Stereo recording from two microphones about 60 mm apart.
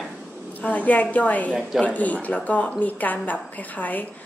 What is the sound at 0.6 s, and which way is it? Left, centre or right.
Speech, left.